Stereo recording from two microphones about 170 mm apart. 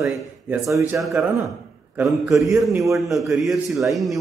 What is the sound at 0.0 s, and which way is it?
A man's voice, 5° right (ahead or behind).